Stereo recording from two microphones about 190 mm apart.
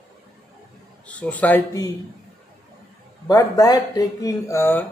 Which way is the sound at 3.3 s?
20° left (ahead or behind).